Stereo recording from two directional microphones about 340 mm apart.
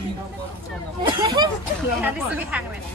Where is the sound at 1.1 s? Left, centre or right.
Centre.